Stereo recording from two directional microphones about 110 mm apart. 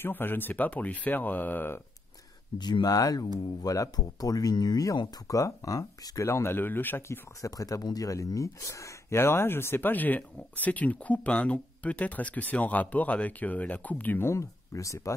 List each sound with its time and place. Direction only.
0.0 s speech: 20° left (ahead or behind)
2.6 s speech: 40° left (ahead or behind)